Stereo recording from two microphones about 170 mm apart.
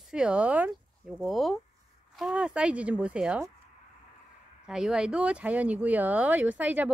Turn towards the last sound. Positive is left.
turn(degrees=-10)  # may be behind; listen again after turning